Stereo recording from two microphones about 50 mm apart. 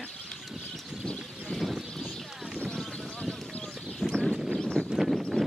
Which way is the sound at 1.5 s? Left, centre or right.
Centre.